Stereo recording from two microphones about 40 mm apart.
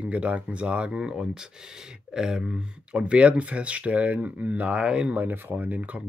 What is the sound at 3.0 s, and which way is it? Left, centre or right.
Speech, right.